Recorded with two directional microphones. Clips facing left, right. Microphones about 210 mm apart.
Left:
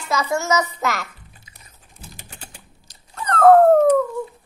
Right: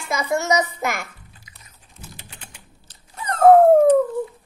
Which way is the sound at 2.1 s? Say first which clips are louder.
Left 2 dB; 45° left (ahead or behind).